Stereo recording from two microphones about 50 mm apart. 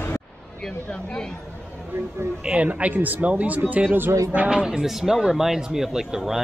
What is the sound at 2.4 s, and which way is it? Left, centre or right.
A man's voice, right.